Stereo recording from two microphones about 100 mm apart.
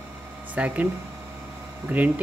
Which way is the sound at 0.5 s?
15° right (ahead or behind).